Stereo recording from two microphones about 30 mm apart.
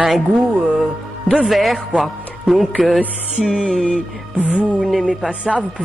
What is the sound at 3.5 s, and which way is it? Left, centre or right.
Speech, right.